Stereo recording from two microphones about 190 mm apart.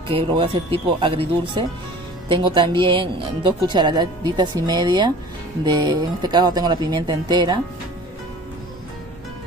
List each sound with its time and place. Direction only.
0.1 s speech: 25° right (ahead or behind)